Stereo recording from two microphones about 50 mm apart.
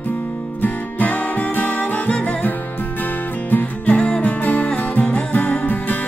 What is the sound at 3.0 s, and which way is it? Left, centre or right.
Music, left.